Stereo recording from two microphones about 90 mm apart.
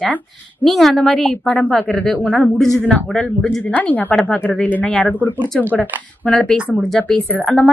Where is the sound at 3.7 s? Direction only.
20° left (ahead or behind).